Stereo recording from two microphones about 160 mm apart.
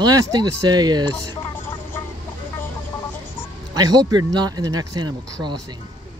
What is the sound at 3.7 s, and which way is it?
Speech, 25° right (ahead or behind).